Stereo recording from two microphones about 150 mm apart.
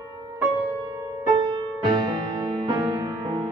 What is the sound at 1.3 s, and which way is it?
Music, 30° right (ahead or behind).